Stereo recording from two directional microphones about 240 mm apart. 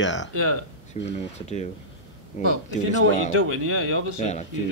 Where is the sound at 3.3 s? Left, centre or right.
Right.